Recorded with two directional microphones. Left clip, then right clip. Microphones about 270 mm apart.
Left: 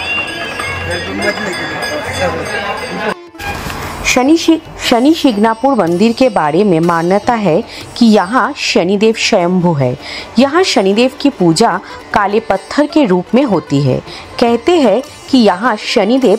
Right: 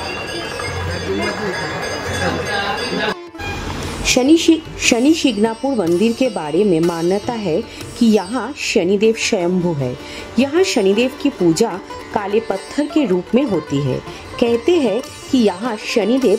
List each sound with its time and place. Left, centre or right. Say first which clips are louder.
4.0 s a woman's voice: left 3 dB; centre
6.2 s a woman's voice: left 6 dB; centre